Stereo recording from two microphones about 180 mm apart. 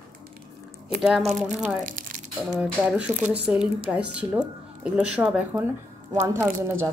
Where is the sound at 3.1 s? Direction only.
40° right (ahead or behind).